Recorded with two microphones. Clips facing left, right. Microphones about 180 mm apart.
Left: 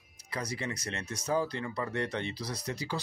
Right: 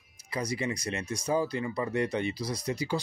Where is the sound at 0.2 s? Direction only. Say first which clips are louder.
Right 5 dB; 10° right (ahead or behind).